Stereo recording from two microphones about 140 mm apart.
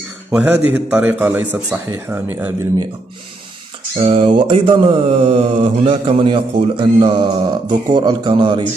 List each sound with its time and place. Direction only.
0.3 s a man's voice: 10° right (ahead or behind)
4.0 s mantra: 40° right (ahead or behind)